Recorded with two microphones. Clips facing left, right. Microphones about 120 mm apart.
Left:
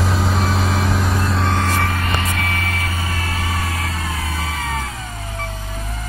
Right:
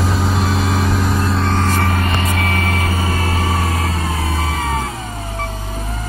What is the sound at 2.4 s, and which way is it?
Vehicle, 30° right (ahead or behind).